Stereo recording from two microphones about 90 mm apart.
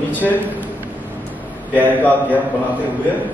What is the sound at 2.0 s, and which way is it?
Speech, 20° left (ahead or behind).